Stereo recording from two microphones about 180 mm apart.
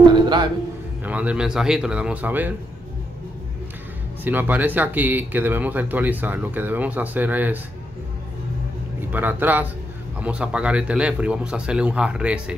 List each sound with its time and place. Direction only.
0.1 s a sound: 25° right (ahead or behind)
1.0 s a man's voice: 10° right (ahead or behind)
4.2 s speech: 10° right (ahead or behind)
9.1 s a man's voice: 10° right (ahead or behind)